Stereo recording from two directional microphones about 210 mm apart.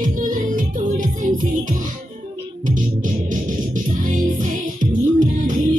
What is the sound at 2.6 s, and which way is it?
Music, 40° right (ahead or behind).